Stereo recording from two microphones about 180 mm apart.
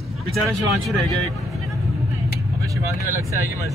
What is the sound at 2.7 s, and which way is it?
Speech, 15° right (ahead or behind).